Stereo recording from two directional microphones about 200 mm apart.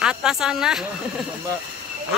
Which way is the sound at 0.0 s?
5° right (ahead or behind).